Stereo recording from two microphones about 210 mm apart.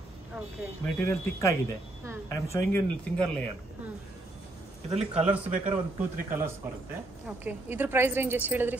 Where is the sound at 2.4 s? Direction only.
10° left (ahead or behind).